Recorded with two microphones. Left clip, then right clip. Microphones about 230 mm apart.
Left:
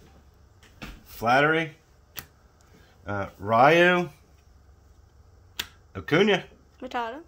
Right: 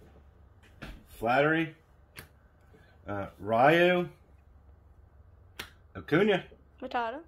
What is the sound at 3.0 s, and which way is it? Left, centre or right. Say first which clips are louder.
Speech: left 5 dB; left.